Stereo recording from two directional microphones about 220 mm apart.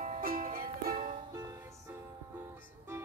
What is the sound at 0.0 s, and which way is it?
Music, 40° right (ahead or behind).